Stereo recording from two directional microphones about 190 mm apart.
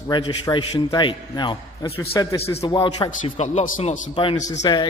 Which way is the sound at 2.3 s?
30° left (ahead or behind).